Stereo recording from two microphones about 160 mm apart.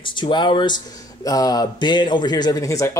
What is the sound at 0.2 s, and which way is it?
Speech, 30° left (ahead or behind).